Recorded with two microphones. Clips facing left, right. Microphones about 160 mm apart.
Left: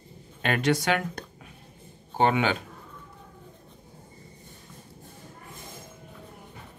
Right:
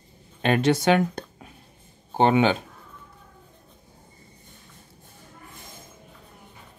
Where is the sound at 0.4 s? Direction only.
25° right (ahead or behind).